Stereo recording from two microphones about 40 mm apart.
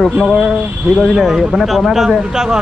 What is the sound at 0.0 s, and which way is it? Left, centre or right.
Speech, centre.